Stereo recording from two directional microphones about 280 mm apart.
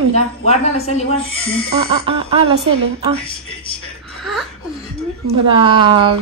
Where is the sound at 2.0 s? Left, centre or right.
Centre.